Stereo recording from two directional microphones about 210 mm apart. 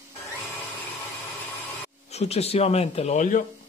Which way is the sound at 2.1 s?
30° left (ahead or behind).